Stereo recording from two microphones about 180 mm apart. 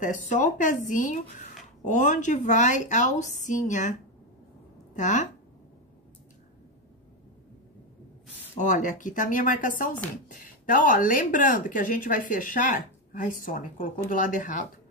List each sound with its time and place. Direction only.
0.0 s speech: 45° left (ahead or behind)
4.9 s speech: 40° left (ahead or behind)
8.5 s speech: 45° left (ahead or behind)